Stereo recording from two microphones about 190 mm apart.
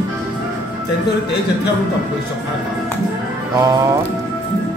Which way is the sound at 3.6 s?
15° right (ahead or behind).